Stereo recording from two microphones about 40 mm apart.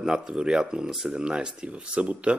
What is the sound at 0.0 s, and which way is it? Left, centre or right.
Speech, centre.